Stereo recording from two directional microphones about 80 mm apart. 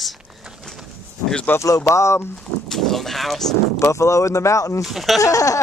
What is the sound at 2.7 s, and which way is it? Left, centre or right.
Speech, centre.